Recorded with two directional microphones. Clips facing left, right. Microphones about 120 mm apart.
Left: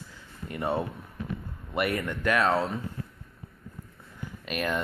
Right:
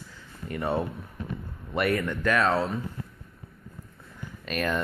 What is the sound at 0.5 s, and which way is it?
Speech, 20° left (ahead or behind).